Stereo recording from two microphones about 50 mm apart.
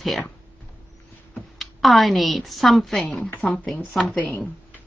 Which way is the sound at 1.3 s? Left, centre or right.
Centre.